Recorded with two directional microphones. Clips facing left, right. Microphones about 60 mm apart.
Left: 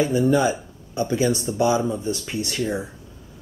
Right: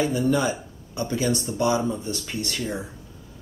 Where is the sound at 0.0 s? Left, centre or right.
Centre.